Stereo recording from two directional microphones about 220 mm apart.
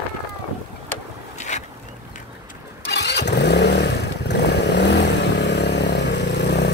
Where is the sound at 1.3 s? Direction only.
30° left (ahead or behind).